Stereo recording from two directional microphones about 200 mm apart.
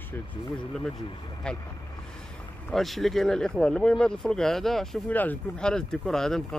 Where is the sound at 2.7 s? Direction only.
Centre (ahead or behind).